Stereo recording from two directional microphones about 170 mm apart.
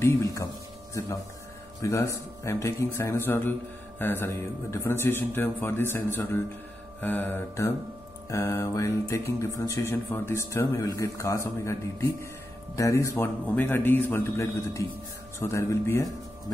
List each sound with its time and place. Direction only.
0.0 s speech: 20° left (ahead or behind)
1.8 s music: 15° left (ahead or behind)